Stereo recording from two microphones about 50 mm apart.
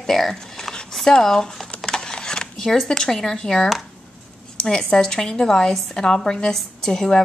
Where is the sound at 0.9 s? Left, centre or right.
Centre.